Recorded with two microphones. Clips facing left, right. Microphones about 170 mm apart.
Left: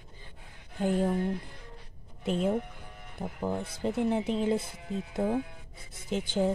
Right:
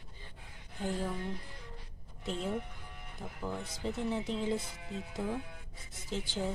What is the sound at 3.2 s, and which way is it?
Speech, 55° left (ahead or behind).